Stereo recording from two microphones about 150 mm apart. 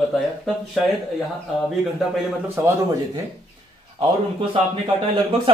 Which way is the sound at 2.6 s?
15° right (ahead or behind).